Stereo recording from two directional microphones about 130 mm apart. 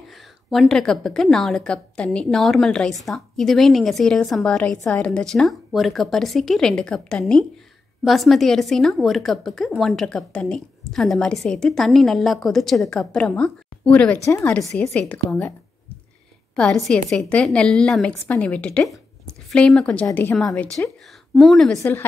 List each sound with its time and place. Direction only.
0.5 s a woman's voice: centre (ahead or behind)
14.2 s a woman's voice: 20° left (ahead or behind)
14.5 s a woman's voice: 5° left (ahead or behind)
16.5 s a woman's voice: 5° left (ahead or behind)
21.4 s a woman's voice: centre (ahead or behind)
21.7 s a woman's voice: 20° left (ahead or behind)